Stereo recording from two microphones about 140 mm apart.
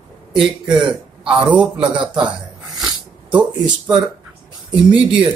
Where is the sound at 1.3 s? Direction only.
10° right (ahead or behind).